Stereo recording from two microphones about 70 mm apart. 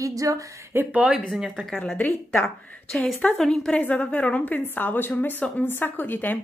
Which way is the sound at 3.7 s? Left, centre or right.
Left.